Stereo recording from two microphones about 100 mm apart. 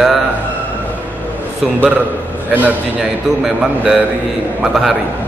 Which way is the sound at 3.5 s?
5° right (ahead or behind).